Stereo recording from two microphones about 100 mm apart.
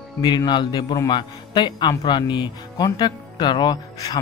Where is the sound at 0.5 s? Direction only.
50° left (ahead or behind).